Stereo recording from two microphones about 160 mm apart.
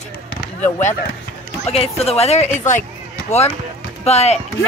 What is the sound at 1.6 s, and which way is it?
Speech, 40° left (ahead or behind).